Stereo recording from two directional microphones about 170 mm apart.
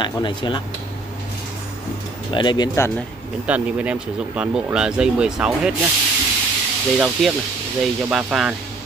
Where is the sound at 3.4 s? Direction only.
10° right (ahead or behind).